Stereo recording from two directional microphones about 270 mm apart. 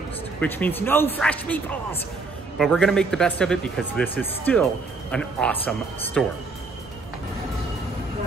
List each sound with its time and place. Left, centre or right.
0.4 s speech: centre